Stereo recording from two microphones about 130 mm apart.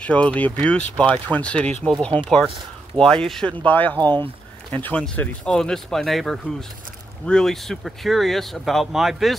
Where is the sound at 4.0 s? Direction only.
35° right (ahead or behind).